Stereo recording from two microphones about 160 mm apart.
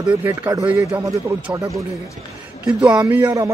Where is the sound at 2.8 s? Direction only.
5° right (ahead or behind).